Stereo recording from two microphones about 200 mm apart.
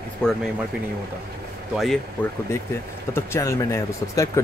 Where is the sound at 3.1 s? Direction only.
15° left (ahead or behind).